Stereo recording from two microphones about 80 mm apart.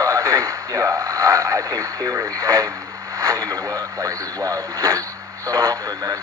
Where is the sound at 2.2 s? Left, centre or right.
Right.